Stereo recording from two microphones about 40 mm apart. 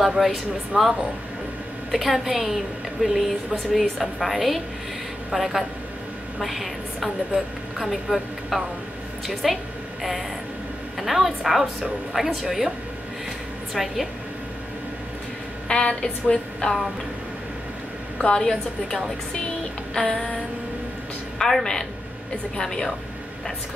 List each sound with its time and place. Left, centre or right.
0.2 s a woman's voice: centre
2.0 s a woman's voice: centre
11.0 s a woman's voice: centre
13.8 s a woman's voice: centre
15.7 s a sound: left
18.3 s a woman's voice: centre
21.4 s a woman's voice: centre